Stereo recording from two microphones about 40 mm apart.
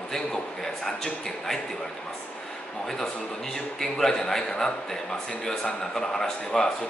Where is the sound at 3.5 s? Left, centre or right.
Centre.